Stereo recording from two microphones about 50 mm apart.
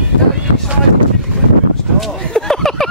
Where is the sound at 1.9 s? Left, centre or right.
Centre.